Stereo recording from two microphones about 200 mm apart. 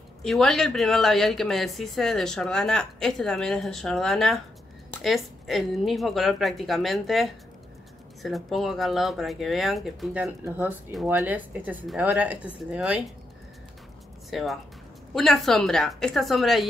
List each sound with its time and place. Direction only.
0.2 s speech: centre (ahead or behind)
14.3 s speech: centre (ahead or behind)